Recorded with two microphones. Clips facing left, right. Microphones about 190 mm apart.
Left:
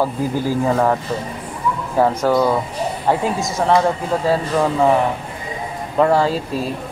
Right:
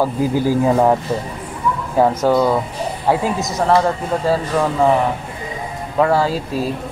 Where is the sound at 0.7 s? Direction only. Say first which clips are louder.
Right 2 dB; 10° right (ahead or behind).